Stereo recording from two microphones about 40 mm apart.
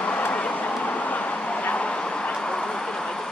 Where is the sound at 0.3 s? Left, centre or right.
Left.